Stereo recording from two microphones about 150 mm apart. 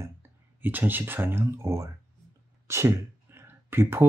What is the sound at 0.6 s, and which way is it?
Speech, 15° right (ahead or behind).